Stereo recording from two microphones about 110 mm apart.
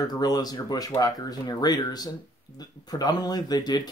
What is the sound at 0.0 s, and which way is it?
Speech, 35° left (ahead or behind).